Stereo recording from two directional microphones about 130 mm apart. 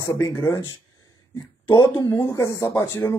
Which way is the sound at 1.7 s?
30° left (ahead or behind).